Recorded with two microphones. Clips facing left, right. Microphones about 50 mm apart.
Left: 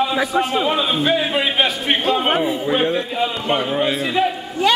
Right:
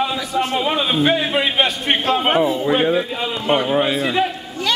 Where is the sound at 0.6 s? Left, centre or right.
Centre.